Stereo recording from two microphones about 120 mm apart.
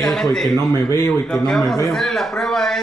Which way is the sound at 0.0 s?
5° left (ahead or behind).